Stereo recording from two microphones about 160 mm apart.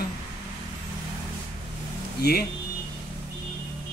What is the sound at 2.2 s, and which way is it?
Speech, 75° left (ahead or behind).